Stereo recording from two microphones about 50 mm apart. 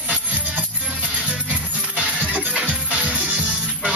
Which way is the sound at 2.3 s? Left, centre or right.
Right.